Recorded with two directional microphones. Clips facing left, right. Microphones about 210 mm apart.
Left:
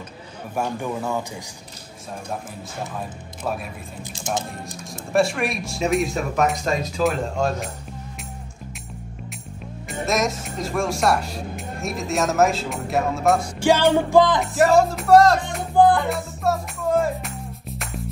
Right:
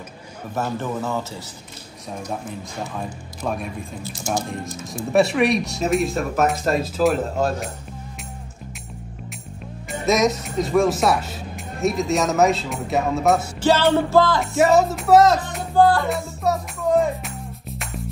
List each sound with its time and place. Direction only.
0.6 s speech: 10° left (ahead or behind)
3.4 s speech: 5° left (ahead or behind)
5.1 s speech: centre (ahead or behind)
9.8 s speech: centre (ahead or behind)
13.6 s music: 10° left (ahead or behind)
14.1 s speech: 15° left (ahead or behind)
14.4 s speech: centre (ahead or behind)
15.7 s speech: 15° left (ahead or behind)
16.1 s music: centre (ahead or behind)